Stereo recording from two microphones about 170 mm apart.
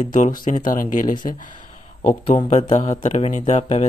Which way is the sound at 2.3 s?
30° left (ahead or behind).